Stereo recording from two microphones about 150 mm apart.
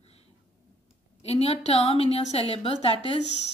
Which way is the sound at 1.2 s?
45° left (ahead or behind).